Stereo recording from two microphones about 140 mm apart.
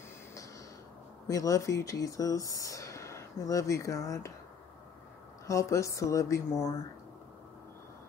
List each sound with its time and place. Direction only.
1.2 s speech: 25° left (ahead or behind)
5.5 s speech: 20° left (ahead or behind)